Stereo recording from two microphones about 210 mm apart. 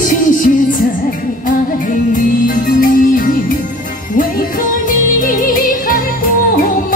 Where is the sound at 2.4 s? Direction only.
40° left (ahead or behind).